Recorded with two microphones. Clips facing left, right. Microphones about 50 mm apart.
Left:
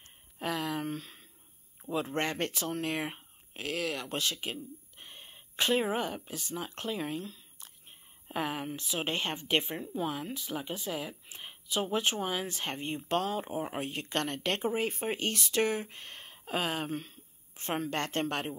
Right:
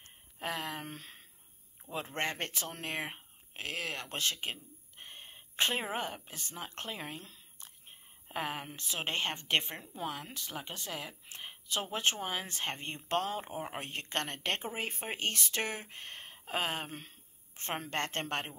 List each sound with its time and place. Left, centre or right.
0.4 s a sound: right
2.1 s speech: right
3.5 s speech: right
9.4 s speech: right
14.2 s speech: right